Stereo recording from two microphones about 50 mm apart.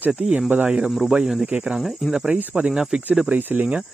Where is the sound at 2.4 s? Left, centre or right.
Right.